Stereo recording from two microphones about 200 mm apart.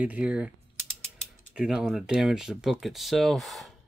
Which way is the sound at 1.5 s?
5° right (ahead or behind).